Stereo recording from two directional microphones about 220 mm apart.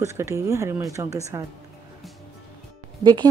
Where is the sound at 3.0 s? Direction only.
20° right (ahead or behind).